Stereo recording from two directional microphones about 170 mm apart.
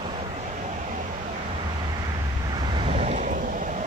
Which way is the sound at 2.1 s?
25° right (ahead or behind).